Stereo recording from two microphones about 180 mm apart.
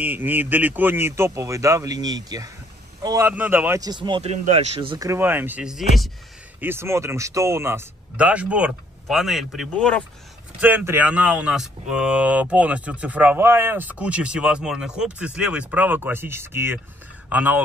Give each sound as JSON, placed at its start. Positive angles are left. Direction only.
{"t": 0.0, "sound": "a man's voice", "side_deg": -10}
{"t": 3.3, "sound": "speech", "side_deg": -10}
{"t": 6.6, "sound": "speech", "side_deg": -15}
{"t": 10.6, "sound": "speech", "side_deg": -10}